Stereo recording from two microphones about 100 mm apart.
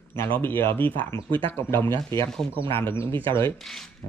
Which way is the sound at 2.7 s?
25° left (ahead or behind).